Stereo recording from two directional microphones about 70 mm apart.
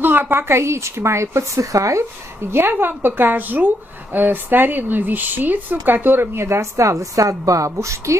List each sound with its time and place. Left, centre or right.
0.0 s a woman's voice: right
2.5 s a woman's voice: right